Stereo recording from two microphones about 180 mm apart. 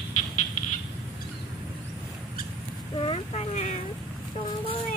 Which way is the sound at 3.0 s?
35° left (ahead or behind).